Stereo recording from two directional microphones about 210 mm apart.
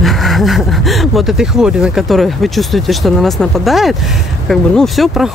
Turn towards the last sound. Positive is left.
turn(degrees=0)  # may be behind; listen again after turning